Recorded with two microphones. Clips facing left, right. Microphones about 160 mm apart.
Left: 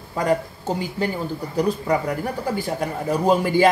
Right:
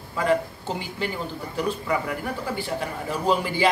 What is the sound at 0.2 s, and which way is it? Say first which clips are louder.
Speech: left 1 dB; 40° left (ahead or behind).